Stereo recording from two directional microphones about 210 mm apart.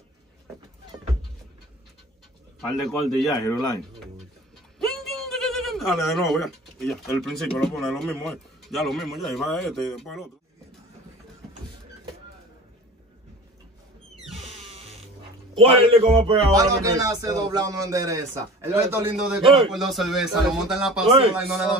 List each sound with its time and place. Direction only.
2.7 s speech: centre (ahead or behind)
4.7 s a man's voice: centre (ahead or behind)
14.4 s music: 30° right (ahead or behind)
15.5 s speech: 25° right (ahead or behind)
16.5 s speech: 15° right (ahead or behind)
19.4 s speech: 25° right (ahead or behind)
19.7 s speech: centre (ahead or behind)